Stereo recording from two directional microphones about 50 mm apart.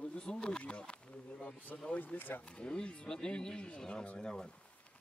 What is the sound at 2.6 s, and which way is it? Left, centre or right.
Speech, left.